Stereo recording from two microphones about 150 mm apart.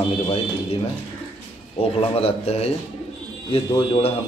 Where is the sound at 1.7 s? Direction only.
40° left (ahead or behind).